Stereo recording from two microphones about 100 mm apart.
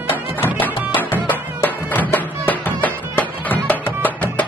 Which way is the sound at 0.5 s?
20° left (ahead or behind).